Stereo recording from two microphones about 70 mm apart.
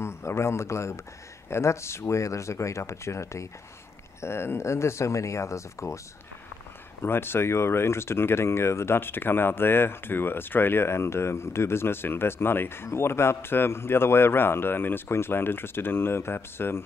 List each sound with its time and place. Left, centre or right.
0.0 s a man's voice: left
7.0 s speech: left